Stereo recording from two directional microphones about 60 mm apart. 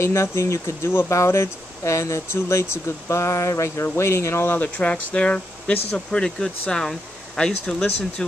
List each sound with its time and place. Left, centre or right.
0.0 s speech: left
4.5 s speech: left